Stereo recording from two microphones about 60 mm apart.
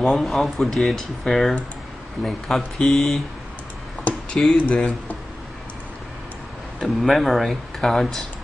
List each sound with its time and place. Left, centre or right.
0.0 s speech: centre
4.5 s speech: centre
6.8 s speech: centre